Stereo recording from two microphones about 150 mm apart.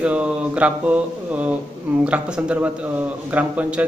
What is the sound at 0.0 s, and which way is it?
A man's voice, 10° right (ahead or behind).